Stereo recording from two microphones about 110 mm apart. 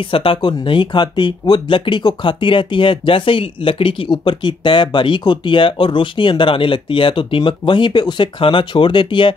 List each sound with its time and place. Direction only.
0.0 s speech: 55° left (ahead or behind)